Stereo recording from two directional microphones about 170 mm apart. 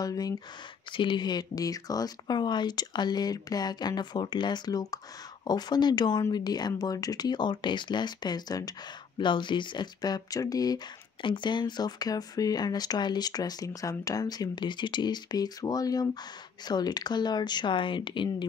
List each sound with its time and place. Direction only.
0.0 s speech: 20° left (ahead or behind)